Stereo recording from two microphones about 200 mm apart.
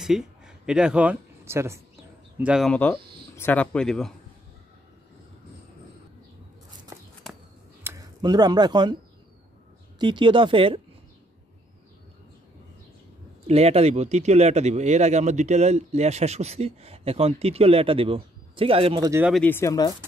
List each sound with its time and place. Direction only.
0.0 s speech: 5° right (ahead or behind)
6.9 s walk: 15° right (ahead or behind)
7.8 s speech: 15° right (ahead or behind)
9.9 s speech: 25° right (ahead or behind)
13.5 s speech: 30° right (ahead or behind)
19.2 s speech: 5° left (ahead or behind)